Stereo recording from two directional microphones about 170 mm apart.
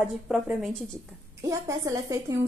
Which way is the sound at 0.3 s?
Centre (ahead or behind).